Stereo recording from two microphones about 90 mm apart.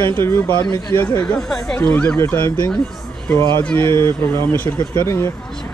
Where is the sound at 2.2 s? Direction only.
30° left (ahead or behind).